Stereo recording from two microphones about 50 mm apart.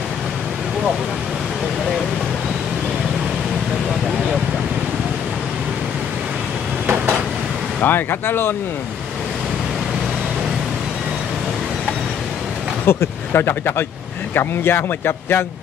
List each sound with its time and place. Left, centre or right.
7.8 s speech: left
12.8 s speech: left